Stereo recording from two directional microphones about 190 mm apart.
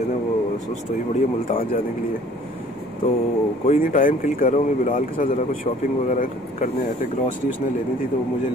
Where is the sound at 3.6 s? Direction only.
40° left (ahead or behind).